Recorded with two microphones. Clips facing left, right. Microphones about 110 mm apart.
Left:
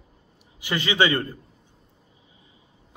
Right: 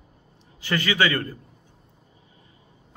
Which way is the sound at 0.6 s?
20° left (ahead or behind).